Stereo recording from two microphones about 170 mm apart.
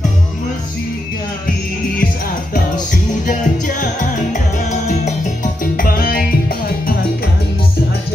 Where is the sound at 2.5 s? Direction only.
50° left (ahead or behind).